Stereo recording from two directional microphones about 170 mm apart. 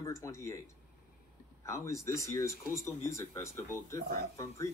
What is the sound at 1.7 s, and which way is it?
Speech, 15° left (ahead or behind).